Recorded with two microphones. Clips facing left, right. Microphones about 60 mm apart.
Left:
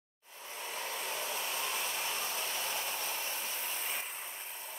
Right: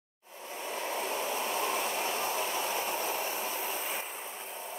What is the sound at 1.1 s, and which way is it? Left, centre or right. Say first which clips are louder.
Hair dryer: right 6 dB; right.